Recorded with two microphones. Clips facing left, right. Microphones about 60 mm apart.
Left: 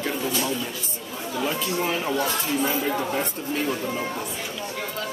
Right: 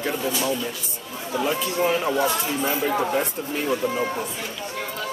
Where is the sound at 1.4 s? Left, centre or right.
Centre.